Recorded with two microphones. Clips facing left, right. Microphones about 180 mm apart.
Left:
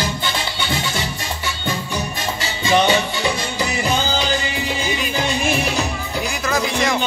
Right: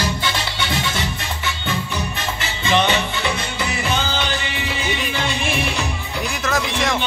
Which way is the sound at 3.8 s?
35° left (ahead or behind).